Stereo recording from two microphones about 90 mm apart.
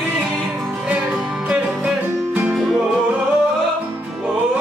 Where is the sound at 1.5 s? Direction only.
10° right (ahead or behind).